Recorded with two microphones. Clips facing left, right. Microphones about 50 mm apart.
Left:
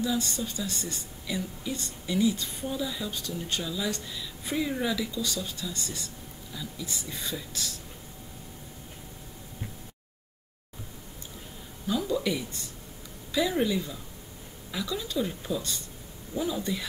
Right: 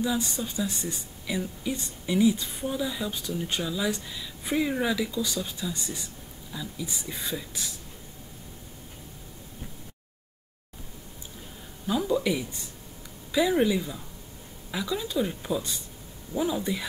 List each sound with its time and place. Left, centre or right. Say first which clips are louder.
0.0 s speech: right 1 dB; centre
11.9 s speech: right 2 dB; centre